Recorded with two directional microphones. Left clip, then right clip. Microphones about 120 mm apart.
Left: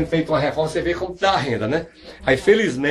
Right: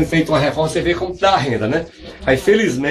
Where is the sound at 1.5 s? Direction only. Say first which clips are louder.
Right 3 dB; 35° left (ahead or behind).